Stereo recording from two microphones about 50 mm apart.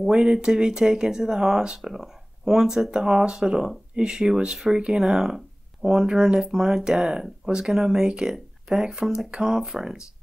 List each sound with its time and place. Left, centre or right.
0.0 s speech: centre